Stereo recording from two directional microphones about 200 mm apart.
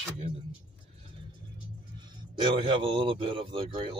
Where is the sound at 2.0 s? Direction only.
25° right (ahead or behind).